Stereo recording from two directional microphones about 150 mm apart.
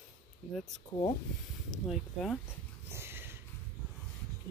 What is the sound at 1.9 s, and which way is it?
Speech, centre (ahead or behind).